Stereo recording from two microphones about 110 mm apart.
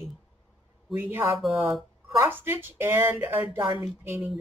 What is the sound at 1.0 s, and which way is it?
Speech, 20° right (ahead or behind).